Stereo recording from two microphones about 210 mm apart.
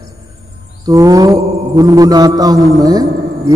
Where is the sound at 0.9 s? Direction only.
15° right (ahead or behind).